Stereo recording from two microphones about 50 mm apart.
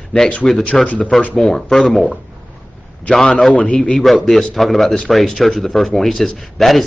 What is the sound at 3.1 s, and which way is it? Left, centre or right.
Speech, left.